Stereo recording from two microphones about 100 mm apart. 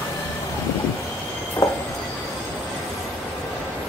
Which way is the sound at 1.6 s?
35° left (ahead or behind).